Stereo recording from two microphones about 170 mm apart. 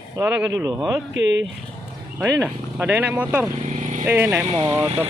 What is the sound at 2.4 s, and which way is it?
Speech, 10° right (ahead or behind).